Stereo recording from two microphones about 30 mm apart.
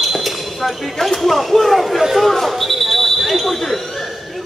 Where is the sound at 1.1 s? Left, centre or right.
Centre.